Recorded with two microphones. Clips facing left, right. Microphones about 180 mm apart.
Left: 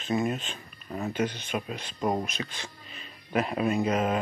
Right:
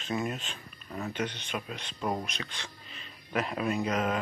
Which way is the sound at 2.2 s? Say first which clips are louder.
Left 4 dB; 5° left (ahead or behind).